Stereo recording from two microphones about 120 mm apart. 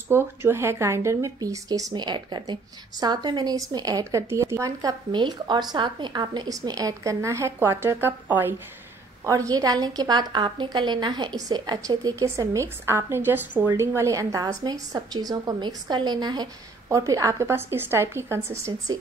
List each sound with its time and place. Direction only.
0.1 s speech: 20° right (ahead or behind)
9.2 s a woman's voice: 30° right (ahead or behind)
18.9 s a woman's voice: 35° right (ahead or behind)